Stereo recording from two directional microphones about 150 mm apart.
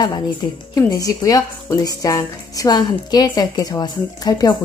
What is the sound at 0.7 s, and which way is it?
A woman's voice, 25° left (ahead or behind).